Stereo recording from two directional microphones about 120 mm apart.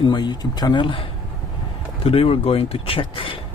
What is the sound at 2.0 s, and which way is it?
Speech, 50° left (ahead or behind).